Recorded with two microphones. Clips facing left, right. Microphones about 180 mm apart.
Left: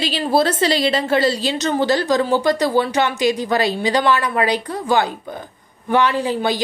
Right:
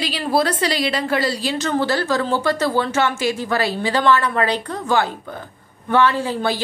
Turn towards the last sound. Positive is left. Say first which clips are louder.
# left 1 dB
turn(degrees=15)  # may be behind; listen again after turning